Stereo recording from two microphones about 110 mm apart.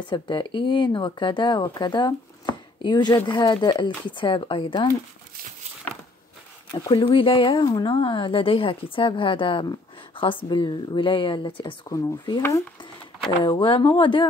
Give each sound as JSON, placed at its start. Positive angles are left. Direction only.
{"t": 0.1, "sound": "speech", "side_deg": 45}
{"t": 6.7, "sound": "speech", "side_deg": 35}
{"t": 7.0, "sound": "speech", "side_deg": 50}
{"t": 11.9, "sound": "speech", "side_deg": 30}
{"t": 13.4, "sound": "speech", "side_deg": 50}